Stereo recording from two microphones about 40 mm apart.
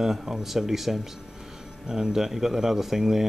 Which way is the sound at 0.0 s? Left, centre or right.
Centre.